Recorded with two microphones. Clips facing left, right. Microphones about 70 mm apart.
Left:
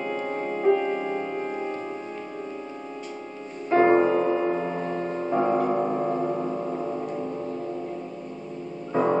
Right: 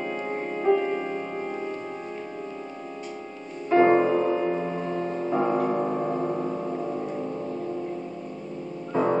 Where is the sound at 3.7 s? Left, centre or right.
Centre.